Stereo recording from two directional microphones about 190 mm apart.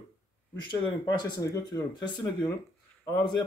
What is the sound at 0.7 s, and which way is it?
A man's voice, 25° left (ahead or behind).